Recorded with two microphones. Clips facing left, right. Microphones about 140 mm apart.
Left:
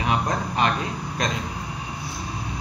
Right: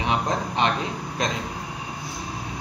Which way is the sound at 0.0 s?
25° right (ahead or behind).